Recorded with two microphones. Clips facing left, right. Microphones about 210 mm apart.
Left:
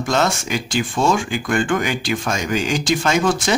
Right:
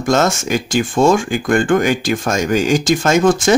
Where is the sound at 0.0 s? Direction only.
45° right (ahead or behind).